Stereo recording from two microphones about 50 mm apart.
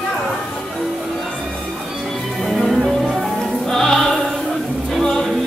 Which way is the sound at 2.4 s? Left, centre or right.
Centre.